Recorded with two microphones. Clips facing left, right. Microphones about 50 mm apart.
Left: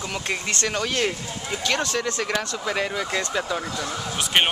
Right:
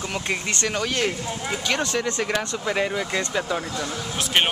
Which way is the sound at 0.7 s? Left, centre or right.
Centre.